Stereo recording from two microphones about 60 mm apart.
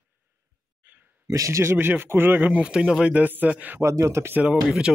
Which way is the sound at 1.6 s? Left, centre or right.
Right.